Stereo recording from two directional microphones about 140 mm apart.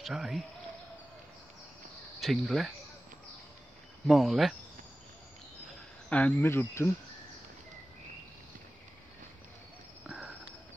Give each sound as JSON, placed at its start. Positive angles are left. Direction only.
{"t": 0.0, "sound": "speech", "side_deg": -5}
{"t": 2.1, "sound": "speech", "side_deg": 0}
{"t": 4.1, "sound": "speech", "side_deg": 0}
{"t": 6.0, "sound": "speech", "side_deg": 10}
{"t": 10.0, "sound": "a sound", "side_deg": -5}